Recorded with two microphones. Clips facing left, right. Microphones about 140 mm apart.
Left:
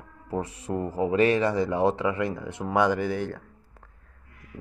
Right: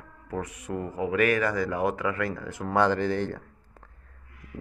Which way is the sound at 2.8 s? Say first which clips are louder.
Even; 10° left (ahead or behind).